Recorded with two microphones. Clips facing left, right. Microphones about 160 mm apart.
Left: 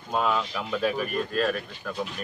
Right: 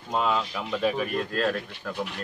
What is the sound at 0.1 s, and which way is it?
Speech, centre (ahead or behind).